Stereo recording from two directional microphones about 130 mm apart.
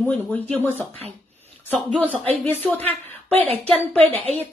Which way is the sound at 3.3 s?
50° right (ahead or behind).